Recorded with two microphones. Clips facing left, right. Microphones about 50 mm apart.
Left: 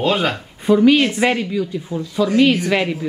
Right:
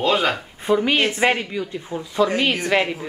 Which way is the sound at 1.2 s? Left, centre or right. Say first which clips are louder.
Left 2 dB; centre.